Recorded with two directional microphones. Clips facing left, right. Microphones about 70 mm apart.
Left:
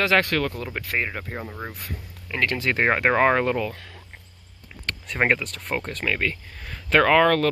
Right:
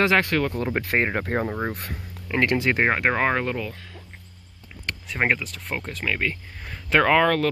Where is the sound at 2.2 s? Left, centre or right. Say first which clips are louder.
Right 3 dB; right.